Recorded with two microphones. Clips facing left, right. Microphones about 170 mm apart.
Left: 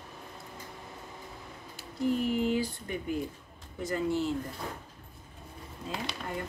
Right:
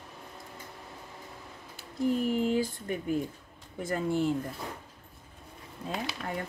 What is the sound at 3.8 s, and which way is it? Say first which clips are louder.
Speech: right 1 dB; 50° right (ahead or behind).